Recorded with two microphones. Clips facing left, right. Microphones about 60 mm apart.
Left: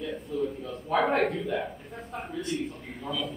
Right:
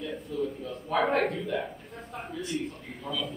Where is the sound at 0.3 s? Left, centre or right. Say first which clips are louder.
Left 1 dB; centre.